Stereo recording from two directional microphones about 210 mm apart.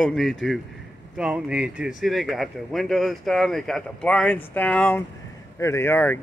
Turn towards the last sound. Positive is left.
turn(degrees=10)  # may be behind; listen again after turning